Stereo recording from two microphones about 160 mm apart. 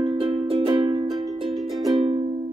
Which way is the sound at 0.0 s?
35° right (ahead or behind).